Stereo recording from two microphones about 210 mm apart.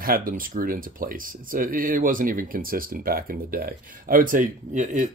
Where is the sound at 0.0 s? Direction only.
45° right (ahead or behind).